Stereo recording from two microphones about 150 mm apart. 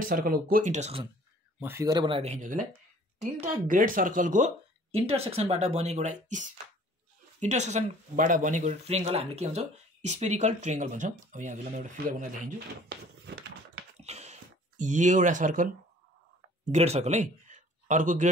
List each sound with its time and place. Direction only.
0.1 s speech: 70° right (ahead or behind); by 1.0 s 50° right (ahead or behind)
1.6 s speech: 20° right (ahead or behind); by 2.6 s 50° right (ahead or behind)
3.6 s speech: 65° right (ahead or behind)
13.9 s a sound: 45° right (ahead or behind)
16.7 s speech: 45° right (ahead or behind)